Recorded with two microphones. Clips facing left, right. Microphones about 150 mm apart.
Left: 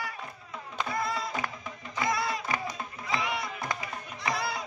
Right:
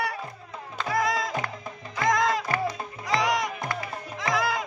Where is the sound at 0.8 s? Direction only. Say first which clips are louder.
Right 7 dB; 90° right.